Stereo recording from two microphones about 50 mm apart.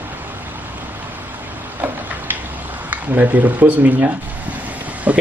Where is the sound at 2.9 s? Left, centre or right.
Right.